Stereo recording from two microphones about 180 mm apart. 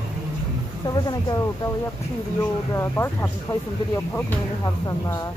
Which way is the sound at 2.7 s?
15° left (ahead or behind).